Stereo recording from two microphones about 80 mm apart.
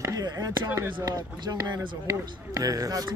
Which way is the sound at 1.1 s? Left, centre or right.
Right.